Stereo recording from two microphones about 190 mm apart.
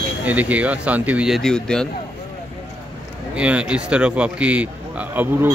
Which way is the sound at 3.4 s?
5° right (ahead or behind).